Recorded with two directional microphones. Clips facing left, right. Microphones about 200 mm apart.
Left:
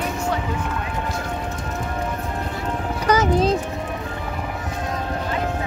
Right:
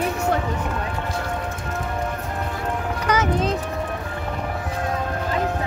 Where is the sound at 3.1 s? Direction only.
35° left (ahead or behind).